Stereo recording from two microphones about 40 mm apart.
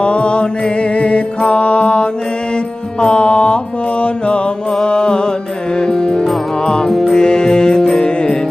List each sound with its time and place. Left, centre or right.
0.0 s mantra: left
3.0 s music: left
6.9 s music: centre
7.2 s music: centre